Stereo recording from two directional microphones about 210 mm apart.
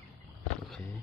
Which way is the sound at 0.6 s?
5° left (ahead or behind).